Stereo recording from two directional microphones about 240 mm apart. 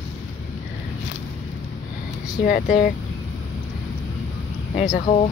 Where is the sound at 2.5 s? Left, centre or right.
Left.